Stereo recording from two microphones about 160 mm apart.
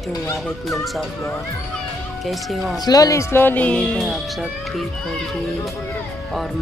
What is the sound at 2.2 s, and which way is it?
Speech, centre (ahead or behind).